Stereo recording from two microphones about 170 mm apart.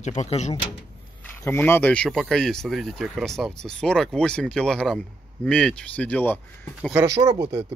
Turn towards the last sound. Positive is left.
turn(degrees=-30)  # may be behind; listen again after turning